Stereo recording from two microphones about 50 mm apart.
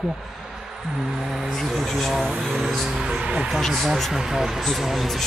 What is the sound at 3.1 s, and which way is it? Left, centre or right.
Speech, centre.